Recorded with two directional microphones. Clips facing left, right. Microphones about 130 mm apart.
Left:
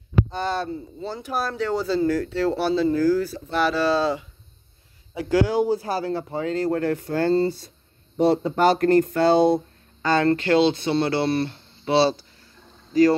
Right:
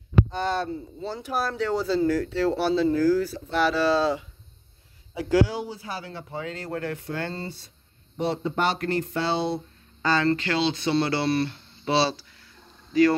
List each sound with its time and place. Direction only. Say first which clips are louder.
0.3 s speech: left 1 dB; 35° left (ahead or behind)